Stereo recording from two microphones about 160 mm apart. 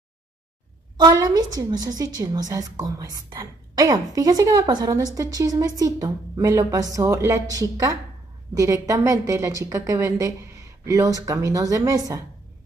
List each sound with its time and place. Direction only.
0.9 s a woman's voice: 25° right (ahead or behind)